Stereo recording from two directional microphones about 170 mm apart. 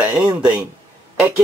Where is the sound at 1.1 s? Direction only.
15° right (ahead or behind).